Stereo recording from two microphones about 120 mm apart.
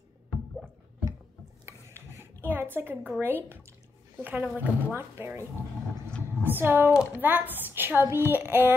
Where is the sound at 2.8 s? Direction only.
20° right (ahead or behind).